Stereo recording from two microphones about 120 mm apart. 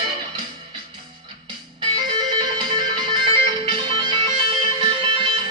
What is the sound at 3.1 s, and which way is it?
Music, 40° right (ahead or behind).